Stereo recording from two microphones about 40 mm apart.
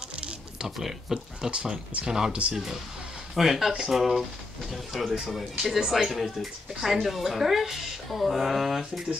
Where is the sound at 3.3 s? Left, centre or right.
Centre.